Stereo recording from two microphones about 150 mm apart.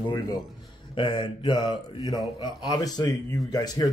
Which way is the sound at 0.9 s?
30° left (ahead or behind).